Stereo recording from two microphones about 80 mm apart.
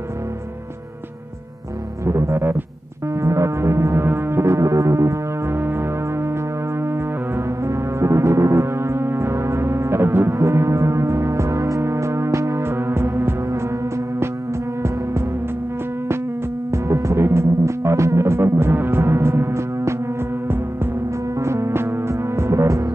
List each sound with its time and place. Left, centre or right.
2.0 s music: right
16.7 s music: right